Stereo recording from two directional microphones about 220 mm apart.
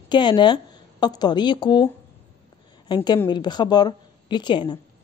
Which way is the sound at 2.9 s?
20° left (ahead or behind).